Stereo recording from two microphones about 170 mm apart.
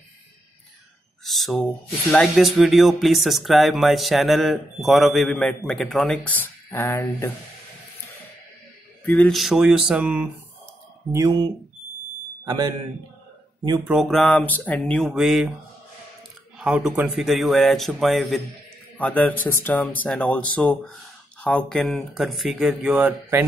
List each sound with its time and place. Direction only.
1.2 s speech: centre (ahead or behind)
9.0 s speech: 10° left (ahead or behind)
9.4 s speech: centre (ahead or behind)
11.1 s speech: 20° right (ahead or behind)
12.4 s a man's voice: 25° right (ahead or behind)
13.8 s speech: centre (ahead or behind)
16.5 s speech: 5° right (ahead or behind)